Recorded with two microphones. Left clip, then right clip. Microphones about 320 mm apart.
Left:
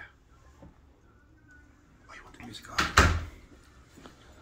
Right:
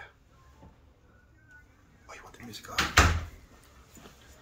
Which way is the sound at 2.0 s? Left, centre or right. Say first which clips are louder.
Right 1 dB; right.